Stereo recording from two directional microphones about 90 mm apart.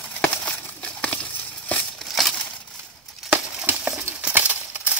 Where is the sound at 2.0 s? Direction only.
Centre (ahead or behind).